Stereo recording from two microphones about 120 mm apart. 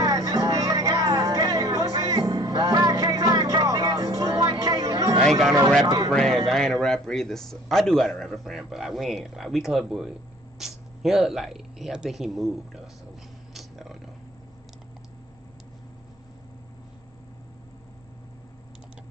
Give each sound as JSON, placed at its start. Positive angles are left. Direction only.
{"t": 0.0, "sound": "music", "side_deg": -30}
{"t": 5.9, "sound": "speech", "side_deg": -30}
{"t": 6.1, "sound": "a man's voice", "side_deg": 5}
{"t": 13.5, "sound": "a sound", "side_deg": 0}